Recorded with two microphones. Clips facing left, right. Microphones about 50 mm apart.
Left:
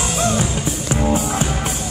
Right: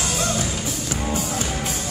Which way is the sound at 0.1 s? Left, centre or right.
Left.